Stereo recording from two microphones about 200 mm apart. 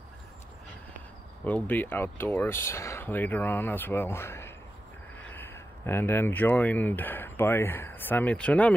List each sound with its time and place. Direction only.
1.4 s speech: 10° left (ahead or behind)